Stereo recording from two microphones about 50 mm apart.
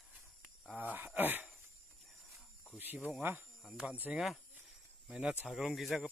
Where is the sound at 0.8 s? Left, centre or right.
Right.